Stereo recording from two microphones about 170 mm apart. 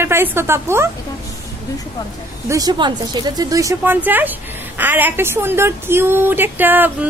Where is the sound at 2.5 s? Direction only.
25° right (ahead or behind).